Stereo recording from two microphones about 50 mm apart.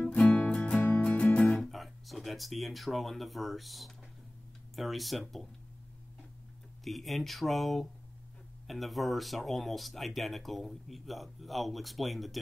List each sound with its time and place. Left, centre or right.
0.1 s music: left
0.5 s music: centre
1.7 s speech: centre
6.8 s speech: centre